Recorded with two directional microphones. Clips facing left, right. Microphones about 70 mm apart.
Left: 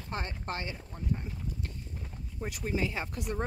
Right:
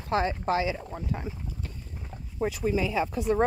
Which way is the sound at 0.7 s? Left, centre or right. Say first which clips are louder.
Right 3 dB; right.